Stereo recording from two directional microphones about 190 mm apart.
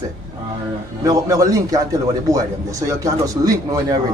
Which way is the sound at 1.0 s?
15° right (ahead or behind).